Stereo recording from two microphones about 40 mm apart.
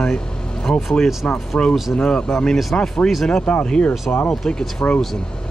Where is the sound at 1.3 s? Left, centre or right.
Left.